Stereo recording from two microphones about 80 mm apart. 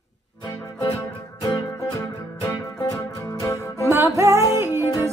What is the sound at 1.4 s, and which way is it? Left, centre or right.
Music, left.